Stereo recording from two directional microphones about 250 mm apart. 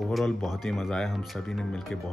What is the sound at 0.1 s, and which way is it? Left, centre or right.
Speech, centre.